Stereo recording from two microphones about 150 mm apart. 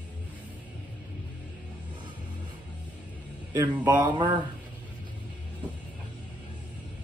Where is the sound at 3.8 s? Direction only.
30° right (ahead or behind).